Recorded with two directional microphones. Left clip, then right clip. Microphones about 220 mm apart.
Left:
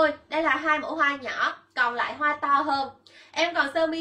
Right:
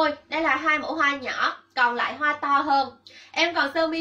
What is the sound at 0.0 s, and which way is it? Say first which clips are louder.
A woman's voice: even; 10° left (ahead or behind).